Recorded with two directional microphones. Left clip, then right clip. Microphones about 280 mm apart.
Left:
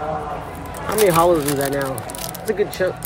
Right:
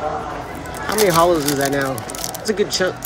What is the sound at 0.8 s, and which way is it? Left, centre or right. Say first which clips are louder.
Speech: even; centre.